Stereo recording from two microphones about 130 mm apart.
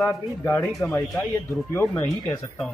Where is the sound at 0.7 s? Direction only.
5° left (ahead or behind).